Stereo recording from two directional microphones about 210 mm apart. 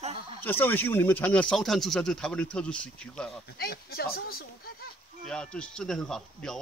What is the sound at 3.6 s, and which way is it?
Speech, 50° left (ahead or behind).